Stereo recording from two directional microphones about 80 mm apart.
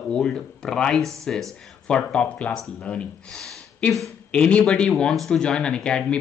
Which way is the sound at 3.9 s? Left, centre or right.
Centre.